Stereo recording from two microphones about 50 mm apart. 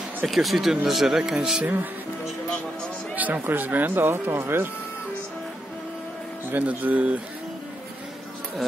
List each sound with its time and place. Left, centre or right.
0.3 s speech: centre
1.6 s speech: right
3.2 s speech: right
6.5 s speech: right